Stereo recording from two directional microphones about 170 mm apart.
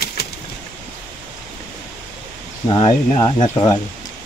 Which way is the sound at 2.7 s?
35° left (ahead or behind).